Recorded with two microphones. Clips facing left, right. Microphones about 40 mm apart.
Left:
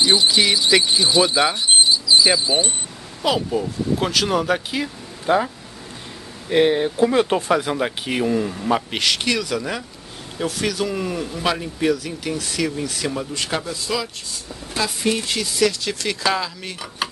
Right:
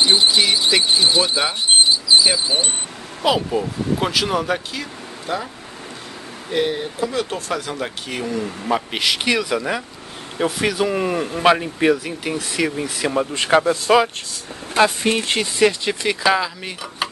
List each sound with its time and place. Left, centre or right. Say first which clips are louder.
0.0 s speech: right 1 dB; right
0.7 s speech: left 1 dB; centre
1.9 s a sound: right 1 dB; right
2.2 s speech: left 1 dB; centre
5.2 s speech: left 7 dB; left
6.5 s speech: left 5 dB; left
8.5 s speech: left 1 dB; centre